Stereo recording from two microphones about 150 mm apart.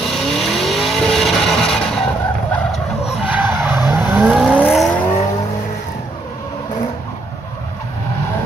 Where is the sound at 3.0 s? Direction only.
10° right (ahead or behind).